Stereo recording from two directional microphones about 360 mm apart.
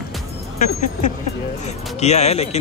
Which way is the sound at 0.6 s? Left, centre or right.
Left.